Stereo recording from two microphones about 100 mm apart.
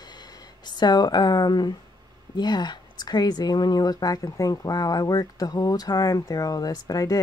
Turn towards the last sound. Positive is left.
turn(degrees=35)  # may be behind; listen again after turning